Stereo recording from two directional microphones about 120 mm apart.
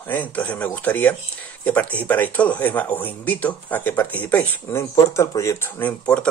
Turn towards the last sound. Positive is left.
turn(degrees=10)  # may be behind; listen again after turning